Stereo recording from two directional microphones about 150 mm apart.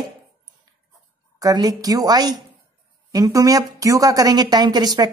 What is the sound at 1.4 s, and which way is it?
A woman's voice, 25° right (ahead or behind).